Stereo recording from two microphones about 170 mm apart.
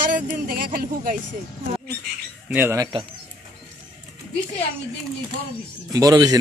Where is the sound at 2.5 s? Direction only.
15° right (ahead or behind).